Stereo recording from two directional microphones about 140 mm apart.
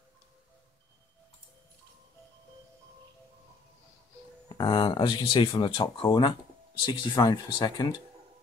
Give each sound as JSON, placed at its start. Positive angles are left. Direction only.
{"t": 4.5, "sound": "speech", "side_deg": 35}